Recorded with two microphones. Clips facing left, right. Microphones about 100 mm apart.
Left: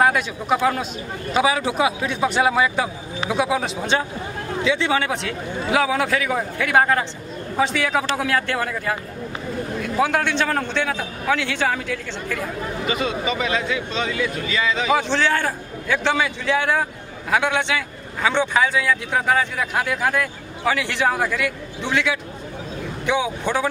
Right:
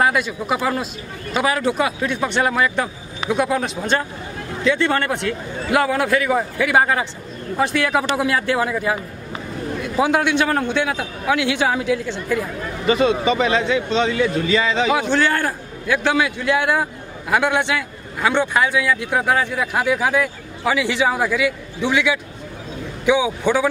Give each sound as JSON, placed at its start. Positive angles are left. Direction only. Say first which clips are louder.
{"t": 0.0, "sound": "a man's voice", "louder": "even", "side_deg": 0}
{"t": 9.9, "sound": "a man's voice", "louder": "right 3 dB", "side_deg": -15}
{"t": 13.0, "sound": "speech", "louder": "right 8 dB", "side_deg": -30}
{"t": 15.0, "sound": "a man's voice", "louder": "right 2 dB", "side_deg": -5}